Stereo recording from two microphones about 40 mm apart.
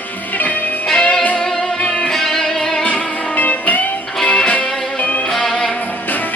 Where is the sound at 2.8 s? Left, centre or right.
Left.